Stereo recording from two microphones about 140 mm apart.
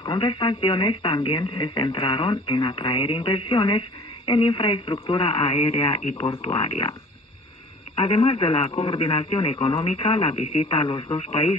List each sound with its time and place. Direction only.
0.0 s speech: 35° left (ahead or behind)
6.1 s speech: 25° left (ahead or behind)
6.6 s speech: 45° left (ahead or behind)
7.9 s speech: 35° left (ahead or behind)